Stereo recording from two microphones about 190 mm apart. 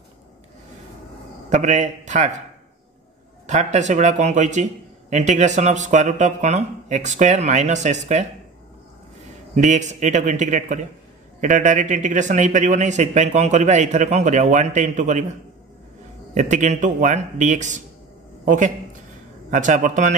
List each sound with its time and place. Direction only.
1.5 s speech: 40° right (ahead or behind)
3.4 s speech: 40° right (ahead or behind)
9.6 s speech: 40° right (ahead or behind)
16.3 s speech: 40° right (ahead or behind)